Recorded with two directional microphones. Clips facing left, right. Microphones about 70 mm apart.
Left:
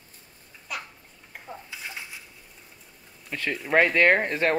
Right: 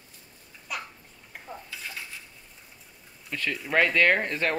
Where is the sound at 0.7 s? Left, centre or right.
Centre.